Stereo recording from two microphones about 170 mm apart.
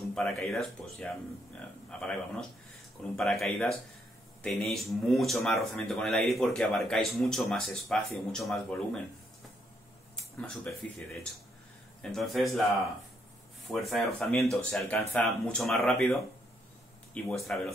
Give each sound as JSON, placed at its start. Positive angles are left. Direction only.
{"t": 0.1, "sound": "speech", "side_deg": 5}
{"t": 10.8, "sound": "speech", "side_deg": 5}
{"t": 13.7, "sound": "speech", "side_deg": 0}